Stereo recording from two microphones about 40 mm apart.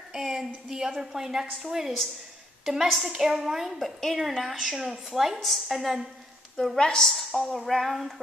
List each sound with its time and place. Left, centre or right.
0.1 s a sound: centre
0.7 s a woman's voice: centre
6.8 s a woman's voice: centre
7.1 s speech: centre